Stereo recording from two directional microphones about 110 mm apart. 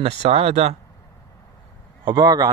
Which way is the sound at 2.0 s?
40° right (ahead or behind).